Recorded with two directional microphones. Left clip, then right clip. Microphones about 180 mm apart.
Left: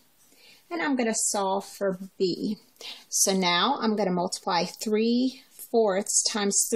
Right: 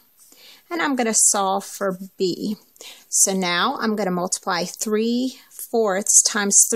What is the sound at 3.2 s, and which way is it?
Speech, 40° right (ahead or behind).